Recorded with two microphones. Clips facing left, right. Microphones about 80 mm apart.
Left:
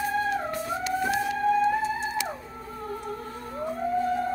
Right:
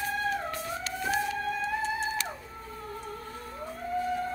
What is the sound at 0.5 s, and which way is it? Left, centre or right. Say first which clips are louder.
Music: left 7 dB; centre.